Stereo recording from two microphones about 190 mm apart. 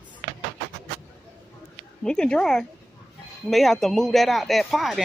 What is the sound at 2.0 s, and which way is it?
Speech, 5° left (ahead or behind).